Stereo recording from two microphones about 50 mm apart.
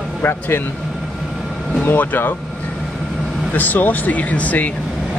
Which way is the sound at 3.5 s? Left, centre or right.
Left.